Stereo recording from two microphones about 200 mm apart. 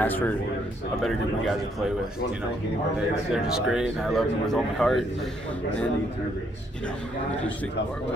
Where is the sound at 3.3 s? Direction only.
5° right (ahead or behind).